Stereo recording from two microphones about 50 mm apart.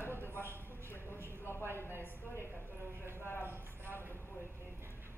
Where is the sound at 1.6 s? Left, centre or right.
Right.